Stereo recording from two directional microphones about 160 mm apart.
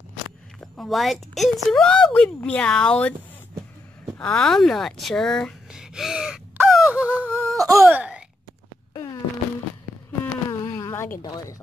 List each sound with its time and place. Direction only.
0.6 s a woman's voice: centre (ahead or behind)
4.2 s speech: 5° left (ahead or behind)
7.5 s wail: 20° right (ahead or behind)
10.2 s a sound: 20° left (ahead or behind)